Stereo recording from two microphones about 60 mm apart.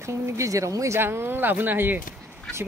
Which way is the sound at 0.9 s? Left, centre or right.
Right.